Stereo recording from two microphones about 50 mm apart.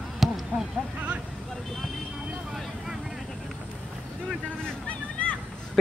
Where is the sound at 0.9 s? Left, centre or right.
Right.